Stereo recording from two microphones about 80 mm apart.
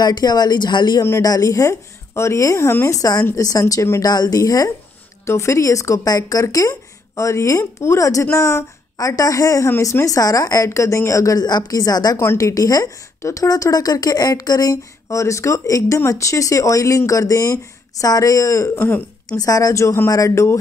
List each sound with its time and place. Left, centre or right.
0.0 s speech: left
1.2 s speech: left
3.0 s a woman's voice: left
4.0 s a woman's voice: left
5.2 s a woman's voice: left
12.2 s a woman's voice: left